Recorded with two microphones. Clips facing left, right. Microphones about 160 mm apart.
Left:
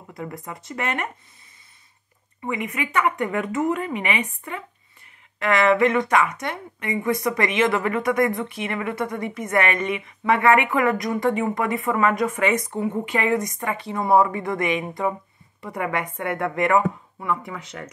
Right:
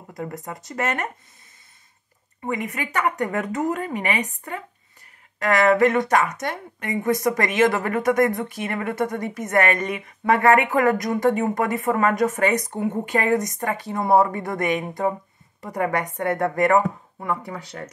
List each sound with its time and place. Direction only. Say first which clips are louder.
0.1 s a woman's voice: right 2 dB; 45° right (ahead or behind)
2.4 s a woman's voice: even; 40° right (ahead or behind)